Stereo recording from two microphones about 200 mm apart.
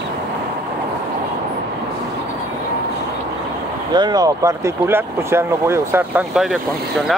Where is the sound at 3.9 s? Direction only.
20° right (ahead or behind).